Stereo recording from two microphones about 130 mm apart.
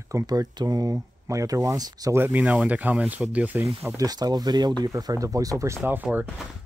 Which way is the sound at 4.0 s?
30° right (ahead or behind).